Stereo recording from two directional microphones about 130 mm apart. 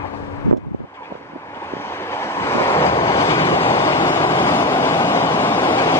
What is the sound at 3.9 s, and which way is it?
Vehicle, 20° left (ahead or behind).